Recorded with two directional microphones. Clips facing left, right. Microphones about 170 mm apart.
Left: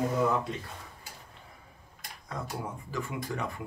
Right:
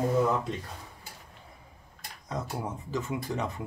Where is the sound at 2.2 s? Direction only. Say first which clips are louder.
Right 3 dB; 20° right (ahead or behind).